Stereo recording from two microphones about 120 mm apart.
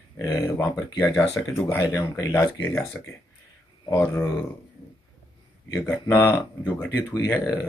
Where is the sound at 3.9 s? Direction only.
20° left (ahead or behind).